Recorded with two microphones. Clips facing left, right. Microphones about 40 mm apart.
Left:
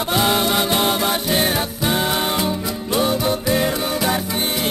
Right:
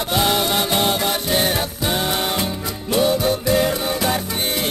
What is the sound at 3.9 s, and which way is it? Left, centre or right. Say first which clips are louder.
Music: left 1 dB; centre.